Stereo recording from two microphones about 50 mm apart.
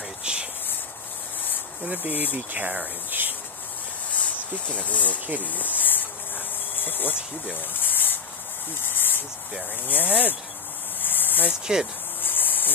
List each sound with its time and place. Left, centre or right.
0.2 s cricket: right
1.9 s speech: right
3.1 s insect: right
4.8 s speech: left
5.4 s cricket: left
6.8 s speech: left
7.7 s cricket: left
9.8 s speech: left
11.0 s a sound: left
11.6 s speech: centre
12.2 s a sound: left